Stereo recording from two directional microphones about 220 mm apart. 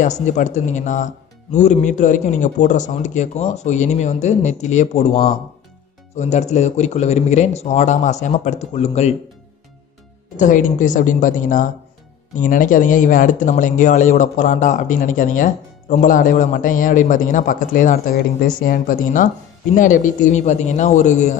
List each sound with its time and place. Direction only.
0.0 s speech: 35° left (ahead or behind)
10.4 s speech: 35° left (ahead or behind)